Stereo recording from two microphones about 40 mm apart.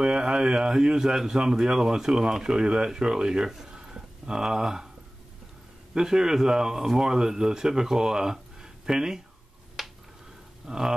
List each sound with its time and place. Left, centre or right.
0.0 s speech: right
5.9 s speech: centre
9.8 s a sound: centre
10.7 s speech: centre